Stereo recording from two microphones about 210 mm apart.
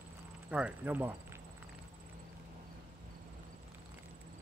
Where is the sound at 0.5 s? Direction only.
5° right (ahead or behind).